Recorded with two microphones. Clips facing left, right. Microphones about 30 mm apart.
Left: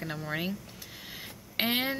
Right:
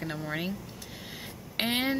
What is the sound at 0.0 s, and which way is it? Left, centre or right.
Speech, centre.